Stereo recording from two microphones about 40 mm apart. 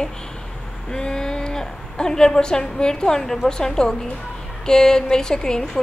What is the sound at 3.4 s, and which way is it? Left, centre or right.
A woman's voice, centre.